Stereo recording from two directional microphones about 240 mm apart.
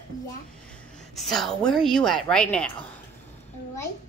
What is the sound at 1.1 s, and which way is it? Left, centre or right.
A woman's voice, centre.